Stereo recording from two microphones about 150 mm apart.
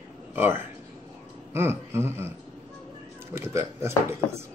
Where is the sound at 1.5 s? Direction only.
15° right (ahead or behind).